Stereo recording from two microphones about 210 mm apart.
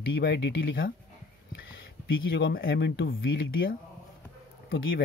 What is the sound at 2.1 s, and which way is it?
Speech, 65° left (ahead or behind).